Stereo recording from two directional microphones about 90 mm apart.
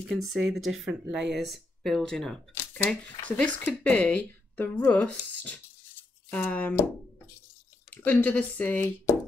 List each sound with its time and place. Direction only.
0.1 s speech: centre (ahead or behind); by 6.8 s 20° left (ahead or behind)
7.9 s speech: 20° left (ahead or behind)